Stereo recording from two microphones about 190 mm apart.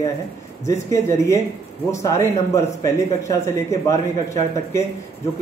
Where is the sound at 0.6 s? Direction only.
15° left (ahead or behind).